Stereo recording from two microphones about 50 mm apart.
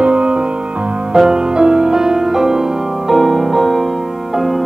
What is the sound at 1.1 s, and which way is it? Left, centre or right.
Music, centre.